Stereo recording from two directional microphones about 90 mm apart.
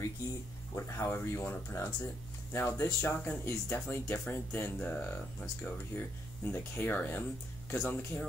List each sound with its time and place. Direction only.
0.7 s speech: 35° left (ahead or behind)